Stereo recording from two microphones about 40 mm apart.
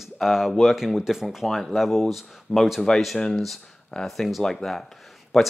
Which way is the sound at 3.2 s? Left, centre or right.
Centre.